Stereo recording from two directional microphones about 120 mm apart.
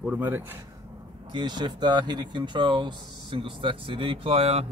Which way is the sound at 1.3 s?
40° right (ahead or behind).